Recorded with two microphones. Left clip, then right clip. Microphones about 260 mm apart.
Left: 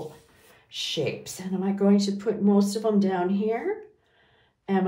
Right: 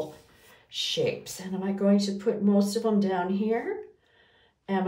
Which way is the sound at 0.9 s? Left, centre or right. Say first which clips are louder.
Right 1 dB; left.